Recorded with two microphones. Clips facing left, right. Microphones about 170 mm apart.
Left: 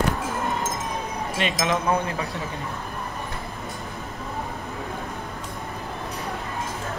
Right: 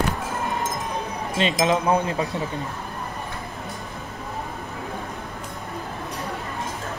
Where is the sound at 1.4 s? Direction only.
20° right (ahead or behind).